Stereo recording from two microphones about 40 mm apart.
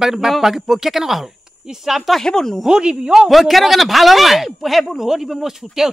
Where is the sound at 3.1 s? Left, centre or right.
Centre.